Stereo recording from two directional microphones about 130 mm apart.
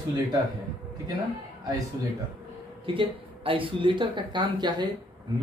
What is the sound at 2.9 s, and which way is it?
A man's voice, 45° right (ahead or behind).